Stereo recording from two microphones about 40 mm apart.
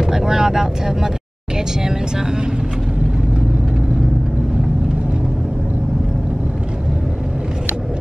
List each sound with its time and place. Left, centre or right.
0.0 s speech: centre